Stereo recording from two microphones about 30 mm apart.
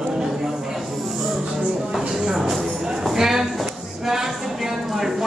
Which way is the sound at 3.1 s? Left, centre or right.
Centre.